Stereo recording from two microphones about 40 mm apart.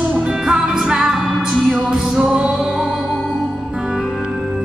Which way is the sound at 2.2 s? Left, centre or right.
Right.